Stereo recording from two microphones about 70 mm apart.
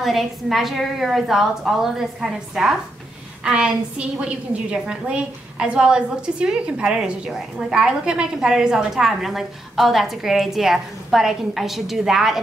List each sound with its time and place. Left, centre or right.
0.0 s a woman's voice: centre